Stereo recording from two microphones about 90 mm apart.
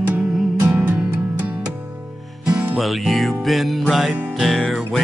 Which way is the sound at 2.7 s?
Centre (ahead or behind).